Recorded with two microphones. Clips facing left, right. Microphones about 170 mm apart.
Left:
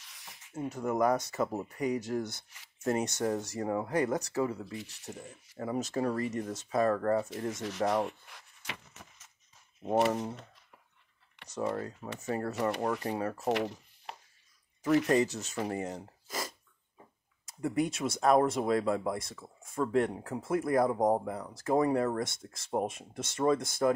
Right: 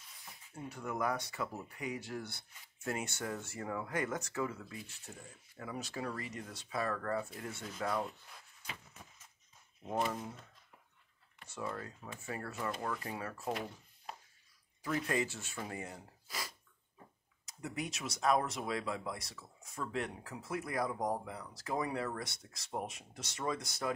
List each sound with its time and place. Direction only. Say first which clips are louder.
0.0 s a sound: left 2 dB; 85° left
0.7 s speech: left 9 dB; 45° left (ahead or behind)
4.7 s speech: left 7 dB; 75° left (ahead or behind)
5.6 s speech: left 10 dB; 40° left (ahead or behind)
7.2 s speech: left 9 dB; 90° left
11.4 s computer keyboard: left 3 dB; 90° left
12.2 s speech: left 10 dB; 40° left (ahead or behind)
12.5 s speech: left 6 dB; 75° left (ahead or behind)
15.0 s speech: left 9 dB; 40° left (ahead or behind)
16.3 s sneeze: left 7 dB; 45° left (ahead or behind)
17.5 s speech: left 11 dB; 50° left (ahead or behind)